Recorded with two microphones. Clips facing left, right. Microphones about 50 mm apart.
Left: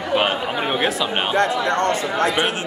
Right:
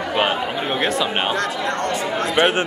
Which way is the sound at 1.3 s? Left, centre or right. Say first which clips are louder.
Left 3 dB; left.